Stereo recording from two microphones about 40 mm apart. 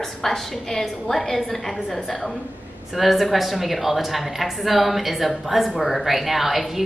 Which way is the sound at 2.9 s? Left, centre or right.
Centre.